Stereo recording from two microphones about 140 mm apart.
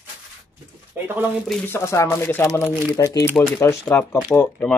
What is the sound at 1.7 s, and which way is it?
Speech, 20° left (ahead or behind).